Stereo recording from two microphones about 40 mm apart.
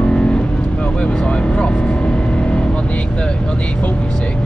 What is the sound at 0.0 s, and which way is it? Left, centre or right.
Vehicle, left.